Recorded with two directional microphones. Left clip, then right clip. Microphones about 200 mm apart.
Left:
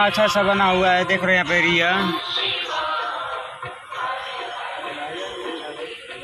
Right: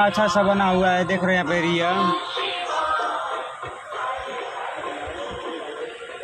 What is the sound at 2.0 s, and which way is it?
Music, 55° right (ahead or behind).